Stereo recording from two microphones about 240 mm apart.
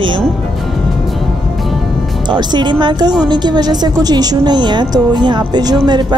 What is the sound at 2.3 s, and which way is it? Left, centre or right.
A woman's voice, centre.